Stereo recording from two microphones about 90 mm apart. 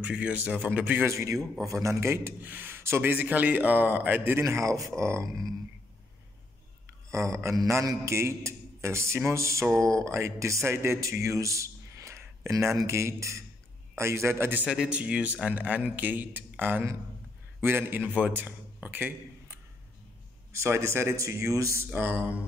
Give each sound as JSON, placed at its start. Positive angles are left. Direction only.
{"t": 0.0, "sound": "a man's voice", "side_deg": -15}
{"t": 1.0, "sound": "a man's voice", "side_deg": -35}
{"t": 7.1, "sound": "a man's voice", "side_deg": -35}
{"t": 14.7, "sound": "a man's voice", "side_deg": -10}
{"t": 20.5, "sound": "a man's voice", "side_deg": -30}